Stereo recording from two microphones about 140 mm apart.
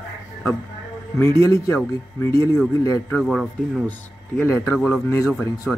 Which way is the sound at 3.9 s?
15° left (ahead or behind).